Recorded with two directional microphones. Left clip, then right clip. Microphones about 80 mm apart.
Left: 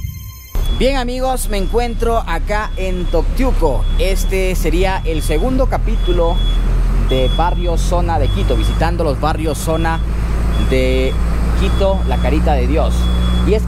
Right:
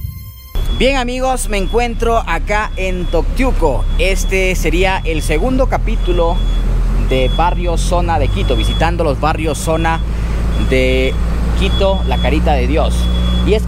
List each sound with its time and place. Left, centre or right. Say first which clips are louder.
0.7 s speech: right 2 dB; right
7.3 s speech: right 2 dB; right
11.4 s vehicle: right 3 dB; left
11.8 s speech: right 1 dB; right
13.0 s vehicle: right 1 dB; left